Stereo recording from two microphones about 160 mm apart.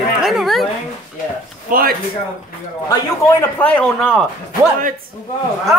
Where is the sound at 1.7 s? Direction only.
60° right (ahead or behind).